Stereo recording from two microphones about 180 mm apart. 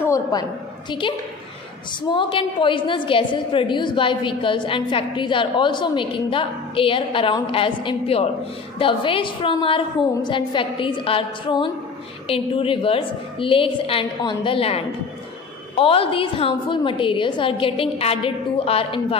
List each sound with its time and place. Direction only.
0.0 s a woman's voice: 20° left (ahead or behind)